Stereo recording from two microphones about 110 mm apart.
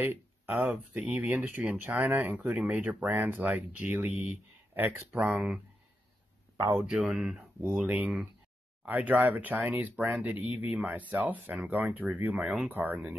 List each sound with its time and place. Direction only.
0.0 s speech: 20° right (ahead or behind)
5.2 s speech: 5° right (ahead or behind)
6.9 s speech: 5° right (ahead or behind)